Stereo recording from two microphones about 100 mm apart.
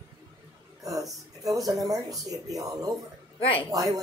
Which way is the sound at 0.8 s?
35° right (ahead or behind).